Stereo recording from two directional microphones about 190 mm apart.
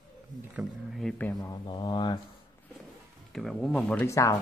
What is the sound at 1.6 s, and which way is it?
Speech, 25° left (ahead or behind).